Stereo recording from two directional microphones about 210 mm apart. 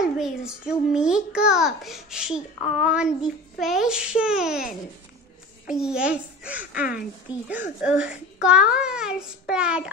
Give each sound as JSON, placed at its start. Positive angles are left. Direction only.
{"t": 0.0, "sound": "a child's voice", "side_deg": -5}
{"t": 5.7, "sound": "a child's voice", "side_deg": -5}